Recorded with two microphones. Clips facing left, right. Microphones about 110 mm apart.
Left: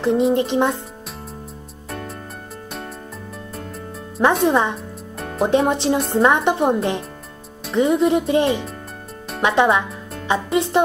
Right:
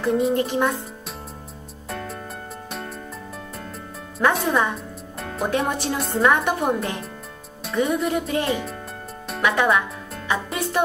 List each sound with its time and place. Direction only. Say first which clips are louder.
0.0 s a woman's voice: left 3 dB; 25° left (ahead or behind)
4.5 s a woman's voice: left 3 dB; 25° left (ahead or behind)